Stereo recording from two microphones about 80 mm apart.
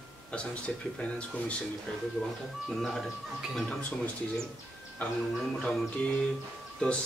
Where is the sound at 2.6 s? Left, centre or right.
Centre.